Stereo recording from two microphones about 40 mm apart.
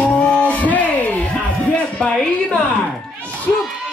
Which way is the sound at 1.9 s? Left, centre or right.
Centre.